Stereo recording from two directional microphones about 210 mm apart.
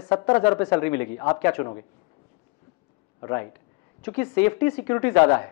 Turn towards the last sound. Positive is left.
turn(degrees=10)  # may be behind; listen again after turning